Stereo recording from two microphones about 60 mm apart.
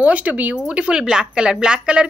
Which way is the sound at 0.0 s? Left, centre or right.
Right.